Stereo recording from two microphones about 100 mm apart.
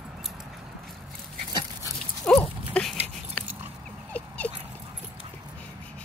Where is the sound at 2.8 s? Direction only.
10° left (ahead or behind).